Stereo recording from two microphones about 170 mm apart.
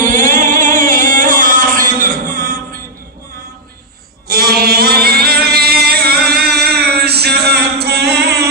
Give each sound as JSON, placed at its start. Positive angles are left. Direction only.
{"t": 0.0, "sound": "music", "side_deg": -50}
{"t": 4.3, "sound": "chant", "side_deg": -65}